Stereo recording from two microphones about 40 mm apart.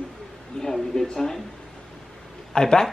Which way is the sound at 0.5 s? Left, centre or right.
Centre.